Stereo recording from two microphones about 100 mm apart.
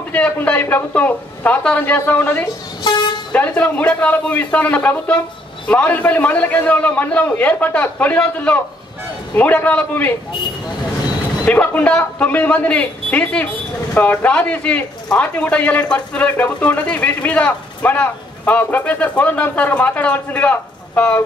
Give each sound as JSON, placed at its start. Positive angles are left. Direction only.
{"t": 0.1, "sound": "speech", "side_deg": 15}
{"t": 2.9, "sound": "vehicle", "side_deg": 45}
{"t": 3.3, "sound": "speech", "side_deg": 15}
{"t": 11.4, "sound": "speech", "side_deg": 15}